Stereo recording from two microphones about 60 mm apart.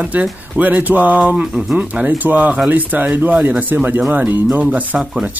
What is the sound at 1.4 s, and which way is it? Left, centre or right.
Speech, centre.